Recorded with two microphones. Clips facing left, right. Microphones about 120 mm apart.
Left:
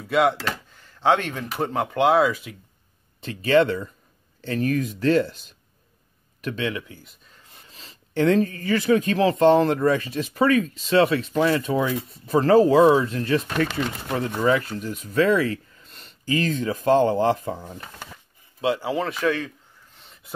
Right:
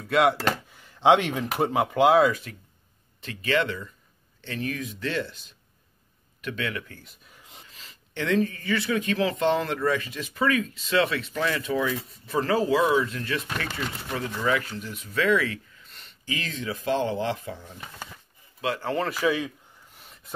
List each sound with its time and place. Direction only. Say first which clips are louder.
0.0 s speech: left 1 dB; centre (ahead or behind)
0.7 s a sound: right 1 dB; 10° right (ahead or behind)
1.6 s speech: even; 5° right (ahead or behind)
3.2 s speech: left 7 dB; 30° left (ahead or behind)
6.4 s speech: left 4 dB; 30° left (ahead or behind)
7.0 s speech: left 1 dB; centre (ahead or behind)
7.7 s speech: left 11 dB; 35° left (ahead or behind)
18.8 s a sound: left 2 dB; 5° left (ahead or behind)